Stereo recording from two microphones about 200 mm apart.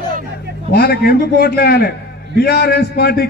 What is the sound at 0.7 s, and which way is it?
Speech, 50° left (ahead or behind).